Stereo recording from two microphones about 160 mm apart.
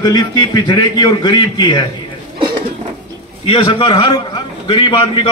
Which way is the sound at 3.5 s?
30° left (ahead or behind).